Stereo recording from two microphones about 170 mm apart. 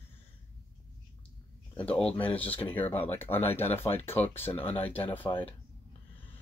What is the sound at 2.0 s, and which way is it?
Speech, 35° left (ahead or behind).